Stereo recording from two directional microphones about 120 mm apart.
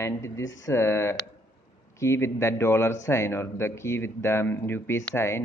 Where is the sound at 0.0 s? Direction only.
25° left (ahead or behind).